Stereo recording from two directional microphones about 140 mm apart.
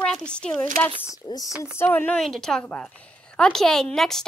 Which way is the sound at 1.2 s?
25° left (ahead or behind).